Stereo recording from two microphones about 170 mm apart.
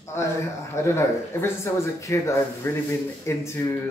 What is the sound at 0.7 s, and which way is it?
Speech, 15° left (ahead or behind).